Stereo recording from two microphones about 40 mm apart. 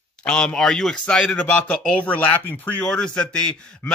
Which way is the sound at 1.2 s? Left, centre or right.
Left.